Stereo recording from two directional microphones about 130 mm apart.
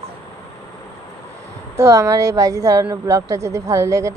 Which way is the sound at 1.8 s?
25° right (ahead or behind).